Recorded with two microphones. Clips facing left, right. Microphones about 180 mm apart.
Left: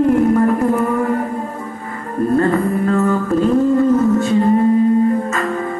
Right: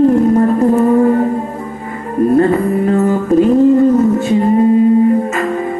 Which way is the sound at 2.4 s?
20° right (ahead or behind).